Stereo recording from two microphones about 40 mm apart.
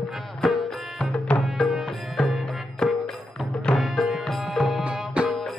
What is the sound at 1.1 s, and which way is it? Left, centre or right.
Music, left.